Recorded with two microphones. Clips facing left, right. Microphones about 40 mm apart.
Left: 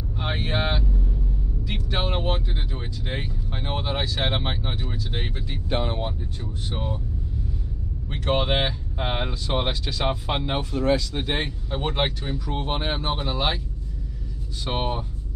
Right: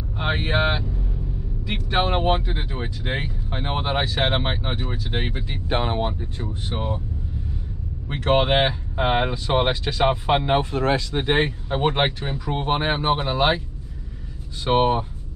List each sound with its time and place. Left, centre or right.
0.2 s speech: right
8.1 s speech: right
14.6 s speech: right